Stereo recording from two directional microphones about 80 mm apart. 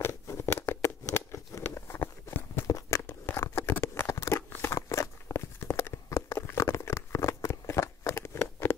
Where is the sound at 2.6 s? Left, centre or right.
Left.